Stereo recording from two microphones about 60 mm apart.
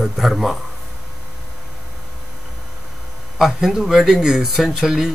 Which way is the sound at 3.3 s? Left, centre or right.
Centre.